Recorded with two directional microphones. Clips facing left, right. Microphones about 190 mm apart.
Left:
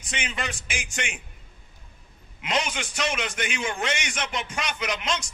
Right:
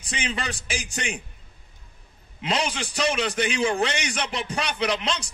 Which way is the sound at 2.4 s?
35° right (ahead or behind).